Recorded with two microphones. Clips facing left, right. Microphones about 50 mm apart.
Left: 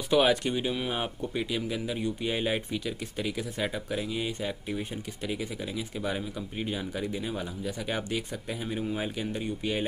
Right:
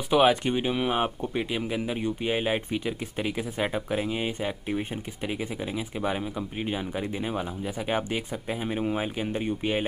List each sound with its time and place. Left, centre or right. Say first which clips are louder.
0.1 s speech: right 3 dB; centre